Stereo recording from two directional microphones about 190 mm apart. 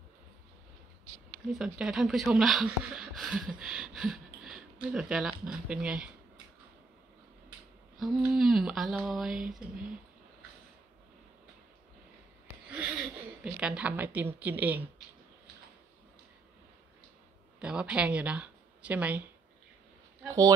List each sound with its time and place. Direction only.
1.5 s speech: 5° right (ahead or behind)
3.9 s a sound: 5° right (ahead or behind)
4.9 s speech: 5° right (ahead or behind)
8.0 s speech: centre (ahead or behind)
13.4 s a woman's voice: 5° right (ahead or behind)
17.6 s speech: 5° right (ahead or behind)
20.2 s a woman's voice: 15° right (ahead or behind)